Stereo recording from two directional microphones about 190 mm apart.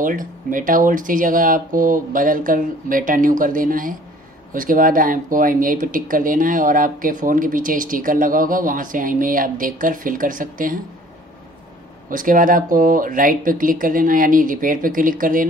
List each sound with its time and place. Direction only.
0.0 s speech: 45° right (ahead or behind)
12.1 s speech: 45° right (ahead or behind)